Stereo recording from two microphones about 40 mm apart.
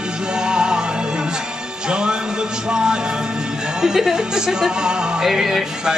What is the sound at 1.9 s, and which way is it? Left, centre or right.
A woman's voice, right.